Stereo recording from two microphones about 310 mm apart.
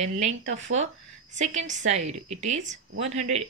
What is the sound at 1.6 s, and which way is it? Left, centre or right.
A woman's voice, right.